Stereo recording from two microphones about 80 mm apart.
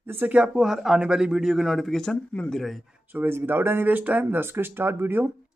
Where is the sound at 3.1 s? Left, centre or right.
Right.